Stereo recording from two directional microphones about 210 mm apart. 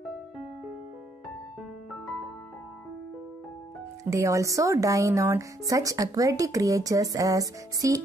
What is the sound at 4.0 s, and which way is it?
Speech, 15° right (ahead or behind).